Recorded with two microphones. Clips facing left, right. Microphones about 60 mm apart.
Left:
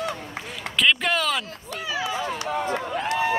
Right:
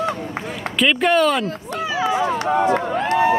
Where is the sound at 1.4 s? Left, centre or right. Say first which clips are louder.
Right 9 dB; right.